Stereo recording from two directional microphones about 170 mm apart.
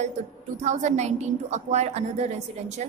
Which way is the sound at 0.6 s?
40° right (ahead or behind).